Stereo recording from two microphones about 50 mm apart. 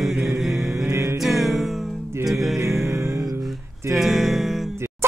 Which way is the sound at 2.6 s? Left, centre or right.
Right.